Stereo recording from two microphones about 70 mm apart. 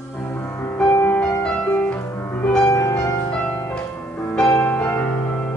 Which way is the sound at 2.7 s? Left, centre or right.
Left.